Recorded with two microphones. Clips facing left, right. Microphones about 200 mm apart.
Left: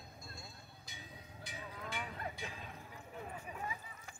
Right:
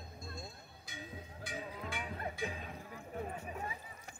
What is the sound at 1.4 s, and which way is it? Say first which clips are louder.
Cowbell: right 4 dB; 50° right (ahead or behind).